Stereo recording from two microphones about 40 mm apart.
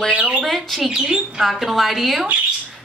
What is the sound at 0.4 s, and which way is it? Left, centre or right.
Bird, centre.